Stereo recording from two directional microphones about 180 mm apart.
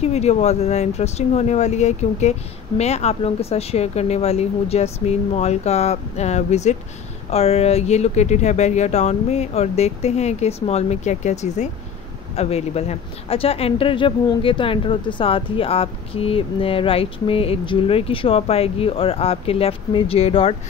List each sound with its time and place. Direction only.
0.0 s speech: 35° left (ahead or behind)